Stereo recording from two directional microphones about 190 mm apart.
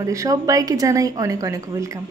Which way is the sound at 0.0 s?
15° right (ahead or behind).